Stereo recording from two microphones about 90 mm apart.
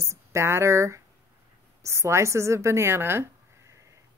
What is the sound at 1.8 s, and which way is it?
Speech, 30° right (ahead or behind).